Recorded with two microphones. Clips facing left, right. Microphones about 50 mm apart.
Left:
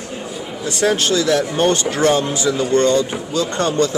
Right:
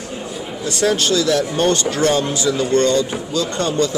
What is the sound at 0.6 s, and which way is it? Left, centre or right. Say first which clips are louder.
Speech: even; left.